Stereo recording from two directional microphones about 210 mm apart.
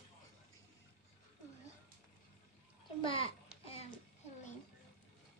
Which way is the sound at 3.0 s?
25° left (ahead or behind).